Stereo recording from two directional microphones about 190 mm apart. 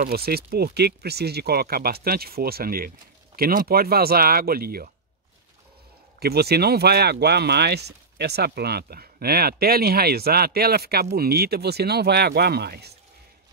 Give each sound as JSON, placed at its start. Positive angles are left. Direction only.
{"t": 0.1, "sound": "speech", "side_deg": -55}
{"t": 6.1, "sound": "speech", "side_deg": -55}